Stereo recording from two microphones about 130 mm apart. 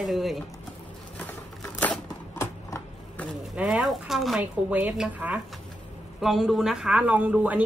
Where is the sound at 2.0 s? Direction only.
25° left (ahead or behind).